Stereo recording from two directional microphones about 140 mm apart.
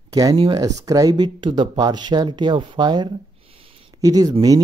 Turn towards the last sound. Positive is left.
turn(degrees=-25)  # may be behind; listen again after turning